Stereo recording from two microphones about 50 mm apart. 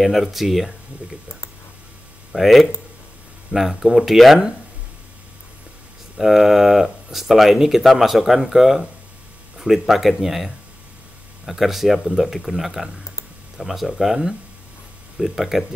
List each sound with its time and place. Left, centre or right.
0.0 s speech: centre
2.3 s speech: centre
6.1 s speech: centre